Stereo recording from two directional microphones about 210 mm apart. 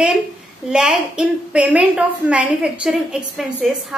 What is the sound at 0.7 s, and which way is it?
A woman's voice, 5° right (ahead or behind).